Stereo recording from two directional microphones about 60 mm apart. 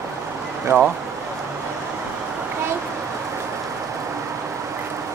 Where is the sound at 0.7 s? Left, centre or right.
Right.